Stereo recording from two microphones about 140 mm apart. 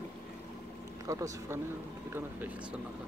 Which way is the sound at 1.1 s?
20° right (ahead or behind).